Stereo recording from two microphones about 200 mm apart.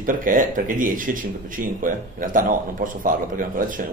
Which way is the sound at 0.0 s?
45° right (ahead or behind).